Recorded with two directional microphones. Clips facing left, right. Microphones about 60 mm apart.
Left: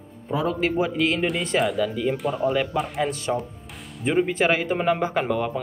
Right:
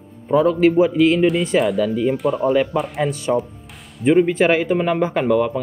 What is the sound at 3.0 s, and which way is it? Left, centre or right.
Speech, right.